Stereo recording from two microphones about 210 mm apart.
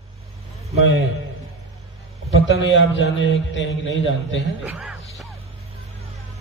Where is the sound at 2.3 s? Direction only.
65° left (ahead or behind).